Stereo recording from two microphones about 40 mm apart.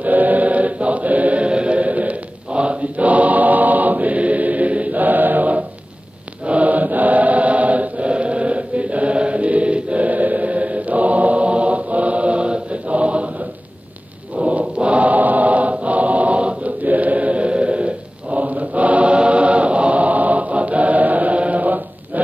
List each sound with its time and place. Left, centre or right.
0.0 s choir: right
2.5 s chant: right
14.4 s choir: right
16.8 s chant: right